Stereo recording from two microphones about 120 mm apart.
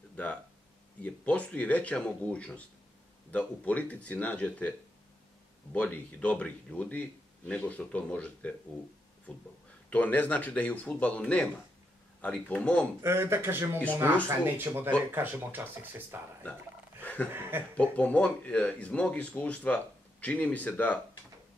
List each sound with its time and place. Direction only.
0.1 s a sound: 10° left (ahead or behind)
1.0 s speech: 10° left (ahead or behind)
13.0 s speech: 20° right (ahead or behind)
17.0 s chuckle: 15° left (ahead or behind)
17.3 s speech: 20° right (ahead or behind)
17.9 s speech: 10° left (ahead or behind)